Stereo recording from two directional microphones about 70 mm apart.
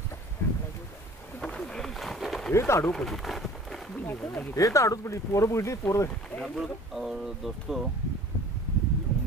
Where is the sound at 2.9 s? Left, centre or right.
Centre.